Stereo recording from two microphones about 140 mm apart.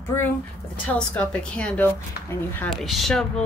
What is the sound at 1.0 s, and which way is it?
Speech, 10° left (ahead or behind).